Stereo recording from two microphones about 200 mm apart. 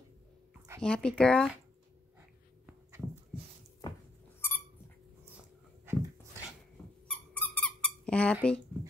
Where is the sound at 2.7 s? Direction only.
15° right (ahead or behind).